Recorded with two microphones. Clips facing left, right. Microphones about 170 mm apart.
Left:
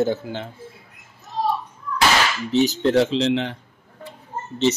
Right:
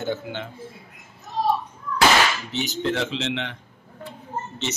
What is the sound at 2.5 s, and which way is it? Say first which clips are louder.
Speech: left 8 dB; 35° left (ahead or behind).